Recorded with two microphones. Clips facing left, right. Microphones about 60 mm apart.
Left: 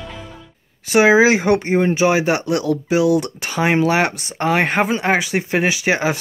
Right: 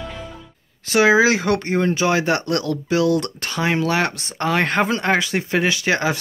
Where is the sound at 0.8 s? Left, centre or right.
Left.